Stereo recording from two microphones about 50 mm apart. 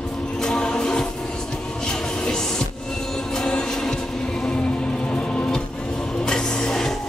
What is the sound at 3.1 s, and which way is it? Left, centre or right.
Music, centre.